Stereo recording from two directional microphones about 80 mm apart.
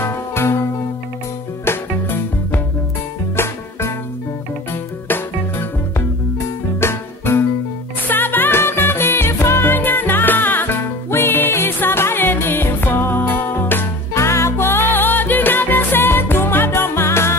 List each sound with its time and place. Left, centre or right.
0.0 s music: left
5.0 s music: left